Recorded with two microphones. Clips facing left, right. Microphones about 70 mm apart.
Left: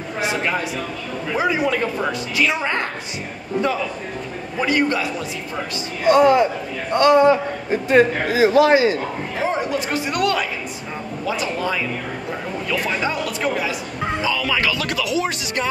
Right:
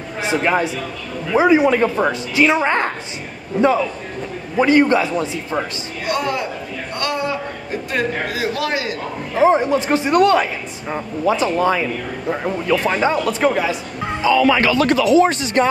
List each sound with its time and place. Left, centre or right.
0.3 s speech: right
4.6 s speech: right
6.0 s a man's voice: left
9.4 s speech: right
12.8 s speech: right